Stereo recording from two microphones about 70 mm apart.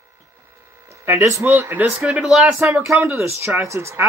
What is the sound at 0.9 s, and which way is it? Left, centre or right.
Speech, right.